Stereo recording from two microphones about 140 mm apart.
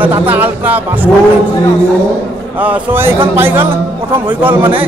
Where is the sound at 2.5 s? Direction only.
10° right (ahead or behind).